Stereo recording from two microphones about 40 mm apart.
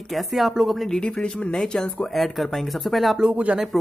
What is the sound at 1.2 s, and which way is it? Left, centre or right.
Speech, left.